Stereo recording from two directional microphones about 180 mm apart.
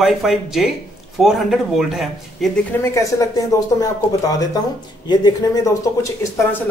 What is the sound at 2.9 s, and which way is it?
Speech, 20° left (ahead or behind).